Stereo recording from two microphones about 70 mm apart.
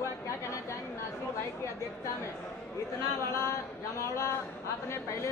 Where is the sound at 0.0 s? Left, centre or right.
Left.